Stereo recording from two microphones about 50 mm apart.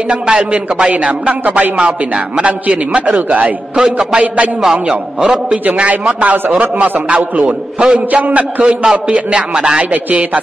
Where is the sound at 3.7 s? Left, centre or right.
Centre.